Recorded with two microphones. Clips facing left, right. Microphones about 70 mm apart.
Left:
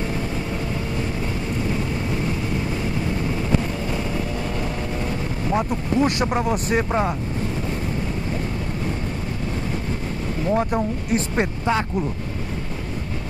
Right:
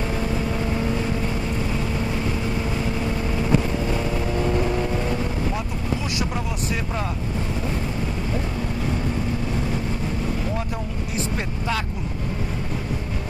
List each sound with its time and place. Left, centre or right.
5.5 s speech: left
10.5 s speech: left